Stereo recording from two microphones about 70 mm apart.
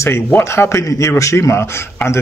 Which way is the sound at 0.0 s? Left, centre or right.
Left.